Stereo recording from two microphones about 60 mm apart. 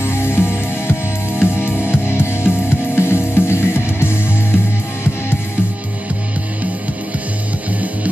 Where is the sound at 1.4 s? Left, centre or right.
Left.